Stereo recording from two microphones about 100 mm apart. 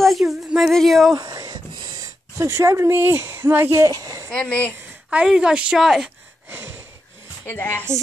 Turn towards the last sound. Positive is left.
turn(degrees=20)  # may be behind; listen again after turning